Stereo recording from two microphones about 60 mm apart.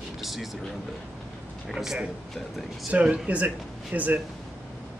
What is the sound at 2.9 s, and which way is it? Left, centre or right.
Speech, right.